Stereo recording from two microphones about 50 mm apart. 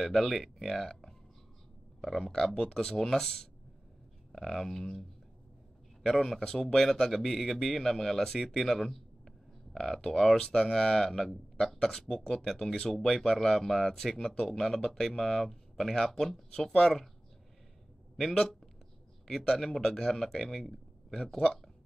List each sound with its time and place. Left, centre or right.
0.0 s speech: centre
2.5 s a man's voice: centre
6.0 s a man's voice: centre
14.6 s a man's voice: centre
18.1 s a man's voice: centre